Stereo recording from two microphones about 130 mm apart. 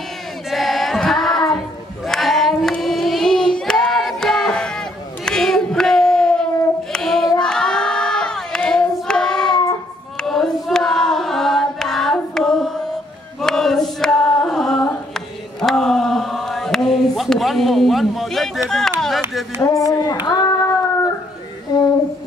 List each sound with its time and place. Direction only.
0.5 s singing: centre (ahead or behind)
2.0 s child singing: centre (ahead or behind)
6.9 s crowd: 5° left (ahead or behind)
10.2 s singing: 5° left (ahead or behind)
18.7 s a sound: 5° left (ahead or behind)
19.6 s a sound: 25° left (ahead or behind)
20.2 s child singing: 30° left (ahead or behind)